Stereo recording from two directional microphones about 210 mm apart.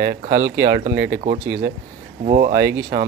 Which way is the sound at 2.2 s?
30° right (ahead or behind).